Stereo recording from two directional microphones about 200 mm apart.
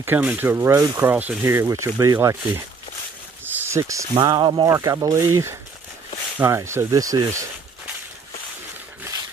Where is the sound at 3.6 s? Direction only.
15° right (ahead or behind).